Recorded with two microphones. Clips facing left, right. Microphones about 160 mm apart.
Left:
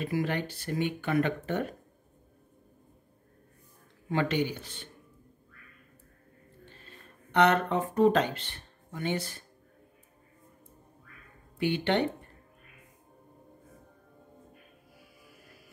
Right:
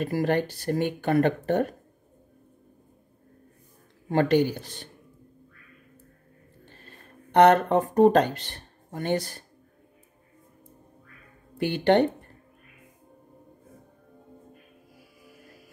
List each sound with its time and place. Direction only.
0.0 s speech: 45° right (ahead or behind)
4.1 s speech: 40° right (ahead or behind)
7.3 s speech: 45° right (ahead or behind)
11.5 s speech: 45° right (ahead or behind)